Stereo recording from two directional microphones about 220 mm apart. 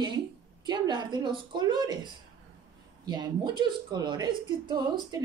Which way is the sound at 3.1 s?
20° right (ahead or behind).